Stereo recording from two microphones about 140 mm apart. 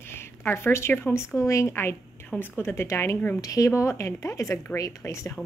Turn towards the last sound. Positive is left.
turn(degrees=20)  # may be behind; listen again after turning